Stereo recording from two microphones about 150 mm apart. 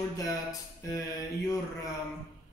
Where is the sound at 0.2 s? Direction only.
25° left (ahead or behind).